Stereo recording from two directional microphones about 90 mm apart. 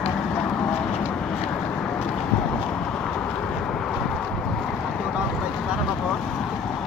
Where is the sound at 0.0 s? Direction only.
10° left (ahead or behind).